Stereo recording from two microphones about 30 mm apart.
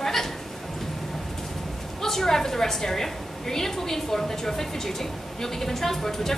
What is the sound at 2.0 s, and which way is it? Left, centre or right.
A woman's voice, centre.